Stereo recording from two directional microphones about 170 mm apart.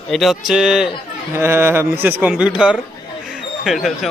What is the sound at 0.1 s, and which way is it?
Speech, centre (ahead or behind).